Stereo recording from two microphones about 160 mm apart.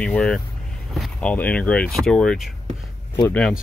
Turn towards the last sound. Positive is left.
turn(degrees=5)  # may be behind; listen again after turning